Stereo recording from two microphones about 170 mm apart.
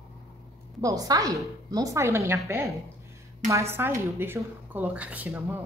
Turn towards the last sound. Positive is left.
turn(degrees=-10)  # may be behind; listen again after turning